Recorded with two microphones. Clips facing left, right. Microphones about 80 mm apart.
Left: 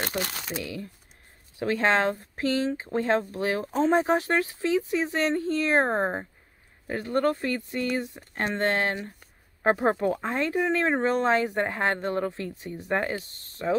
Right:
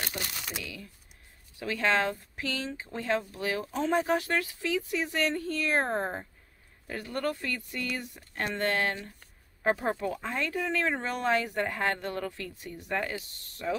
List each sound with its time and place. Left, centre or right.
0.0 s crumpling: left
0.5 s speech: left